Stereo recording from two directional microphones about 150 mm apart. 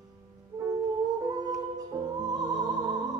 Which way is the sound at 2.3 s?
25° right (ahead or behind).